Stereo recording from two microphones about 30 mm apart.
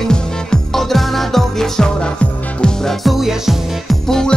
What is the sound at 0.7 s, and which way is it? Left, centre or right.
Music, centre.